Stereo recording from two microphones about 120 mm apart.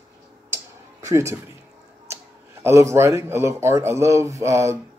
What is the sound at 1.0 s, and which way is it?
Speech, 25° right (ahead or behind).